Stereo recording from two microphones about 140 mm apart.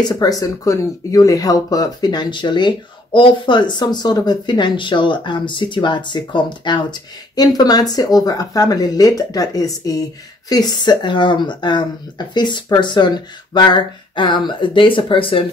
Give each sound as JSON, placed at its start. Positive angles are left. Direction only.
{"t": 0.1, "sound": "speech", "side_deg": 25}